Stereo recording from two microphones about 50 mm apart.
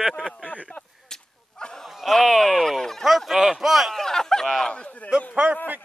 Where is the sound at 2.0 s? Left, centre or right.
Centre.